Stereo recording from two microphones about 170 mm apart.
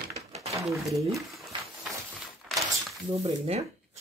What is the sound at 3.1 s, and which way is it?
Speech, 35° right (ahead or behind).